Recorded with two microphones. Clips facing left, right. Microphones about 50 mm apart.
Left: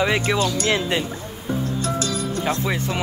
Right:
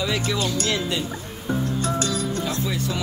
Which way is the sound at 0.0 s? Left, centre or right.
Left.